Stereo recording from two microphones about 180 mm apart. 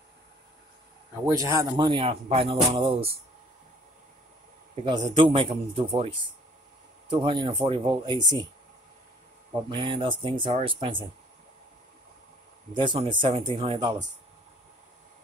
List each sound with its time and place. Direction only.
1.2 s speech: 15° right (ahead or behind)
4.8 s speech: 25° right (ahead or behind)
9.7 s speech: 30° right (ahead or behind)
12.7 s speech: 25° right (ahead or behind)